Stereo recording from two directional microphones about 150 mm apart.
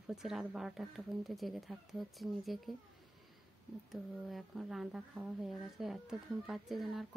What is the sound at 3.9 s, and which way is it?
Speech, centre (ahead or behind).